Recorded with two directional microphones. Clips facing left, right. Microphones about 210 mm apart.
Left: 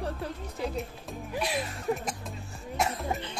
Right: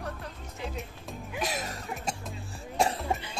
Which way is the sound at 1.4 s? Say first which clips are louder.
Left 1 dB; 45° right (ahead or behind).